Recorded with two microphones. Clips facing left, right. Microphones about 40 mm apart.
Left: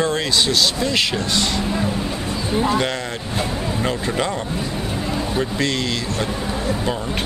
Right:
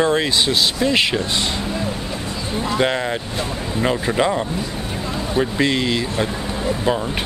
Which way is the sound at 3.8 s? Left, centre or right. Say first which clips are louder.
Right 5 dB; centre.